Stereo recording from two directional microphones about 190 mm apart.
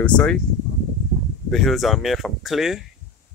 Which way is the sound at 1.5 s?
Centre (ahead or behind).